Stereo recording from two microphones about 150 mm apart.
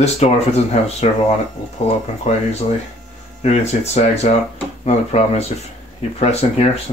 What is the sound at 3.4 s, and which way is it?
Speech, 45° left (ahead or behind).